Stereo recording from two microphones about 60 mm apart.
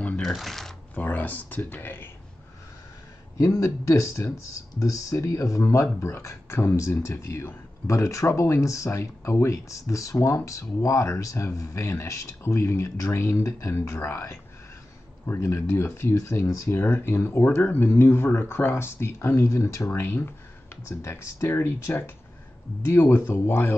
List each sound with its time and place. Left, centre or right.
0.4 s speech: centre
0.9 s speech: left
3.3 s speech: left
4.7 s speech: left
17.0 s speech: left
19.9 s speech: left